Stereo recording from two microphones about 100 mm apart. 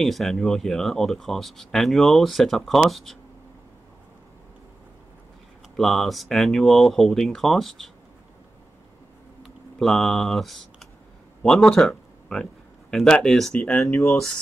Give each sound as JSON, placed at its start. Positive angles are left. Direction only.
{"t": 0.0, "sound": "speech", "side_deg": 0}
{"t": 5.8, "sound": "speech", "side_deg": 0}
{"t": 9.4, "sound": "computer keyboard", "side_deg": 0}
{"t": 11.4, "sound": "speech", "side_deg": 5}
{"t": 13.8, "sound": "speech", "side_deg": 20}